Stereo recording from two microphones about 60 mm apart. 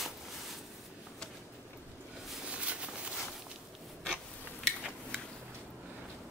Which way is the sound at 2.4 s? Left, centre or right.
Centre.